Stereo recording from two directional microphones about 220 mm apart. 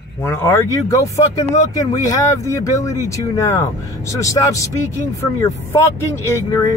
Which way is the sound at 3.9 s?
15° left (ahead or behind).